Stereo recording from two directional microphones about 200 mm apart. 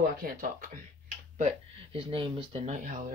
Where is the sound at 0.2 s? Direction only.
40° right (ahead or behind).